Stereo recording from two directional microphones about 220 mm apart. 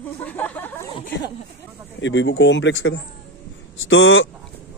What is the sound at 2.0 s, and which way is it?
Speech, 55° left (ahead or behind).